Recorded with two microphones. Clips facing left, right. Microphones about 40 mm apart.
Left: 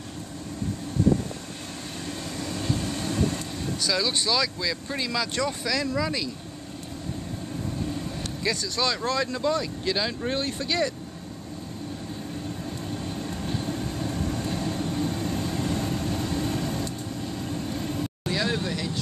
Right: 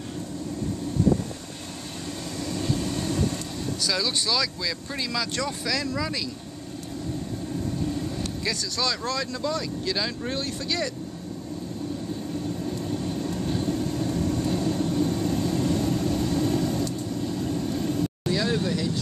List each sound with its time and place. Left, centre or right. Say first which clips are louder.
2.0 s vehicle: right 1 dB; centre
7.8 s speech: right 3 dB; centre
12.9 s vehicle: right 3 dB; centre